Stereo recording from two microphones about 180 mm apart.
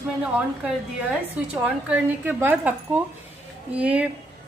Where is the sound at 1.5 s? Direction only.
5° right (ahead or behind).